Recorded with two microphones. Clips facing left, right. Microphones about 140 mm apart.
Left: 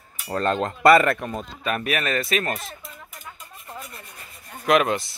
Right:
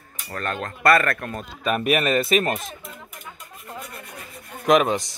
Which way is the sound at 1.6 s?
15° right (ahead or behind).